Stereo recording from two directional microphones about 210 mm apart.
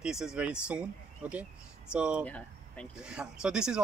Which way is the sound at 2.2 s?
5° left (ahead or behind).